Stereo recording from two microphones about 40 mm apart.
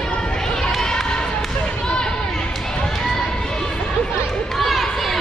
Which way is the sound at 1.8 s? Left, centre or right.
Left.